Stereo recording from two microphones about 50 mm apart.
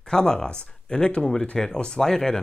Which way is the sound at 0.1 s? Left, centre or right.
Centre.